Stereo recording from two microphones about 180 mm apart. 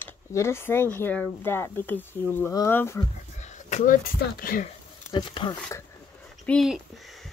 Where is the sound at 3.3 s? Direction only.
40° left (ahead or behind).